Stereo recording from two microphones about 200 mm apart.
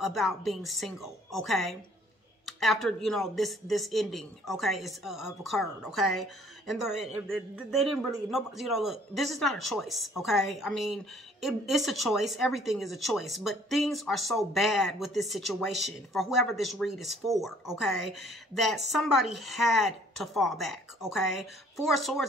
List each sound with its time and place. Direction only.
0.0 s speech: centre (ahead or behind)